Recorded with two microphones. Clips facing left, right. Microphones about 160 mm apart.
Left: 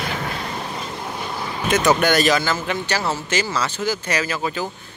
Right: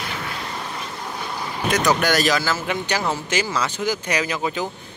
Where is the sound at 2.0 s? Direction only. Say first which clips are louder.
Left 2 dB; centre (ahead or behind).